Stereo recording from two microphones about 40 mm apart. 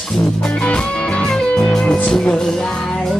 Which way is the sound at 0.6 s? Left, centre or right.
Left.